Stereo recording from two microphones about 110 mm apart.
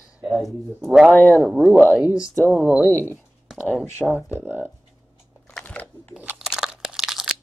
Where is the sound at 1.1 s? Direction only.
15° left (ahead or behind).